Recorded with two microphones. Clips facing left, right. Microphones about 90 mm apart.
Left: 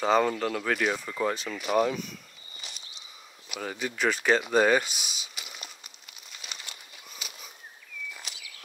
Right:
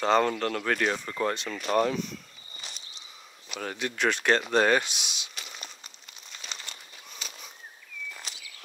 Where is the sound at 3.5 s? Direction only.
5° left (ahead or behind).